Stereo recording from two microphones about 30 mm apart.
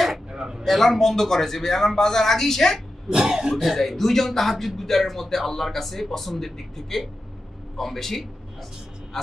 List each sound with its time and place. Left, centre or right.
0.4 s a sound: right
0.7 s speech: centre
3.1 s speech: centre
3.5 s speech: centre